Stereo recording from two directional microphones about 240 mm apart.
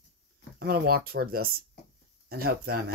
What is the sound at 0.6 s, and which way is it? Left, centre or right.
Speech, right.